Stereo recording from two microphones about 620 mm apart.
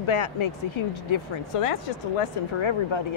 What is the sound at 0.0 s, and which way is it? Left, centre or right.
Speech, left.